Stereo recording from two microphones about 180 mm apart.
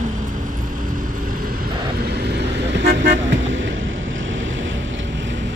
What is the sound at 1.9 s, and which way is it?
Toot, 60° right (ahead or behind).